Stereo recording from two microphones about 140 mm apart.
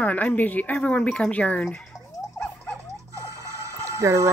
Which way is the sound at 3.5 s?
20° right (ahead or behind).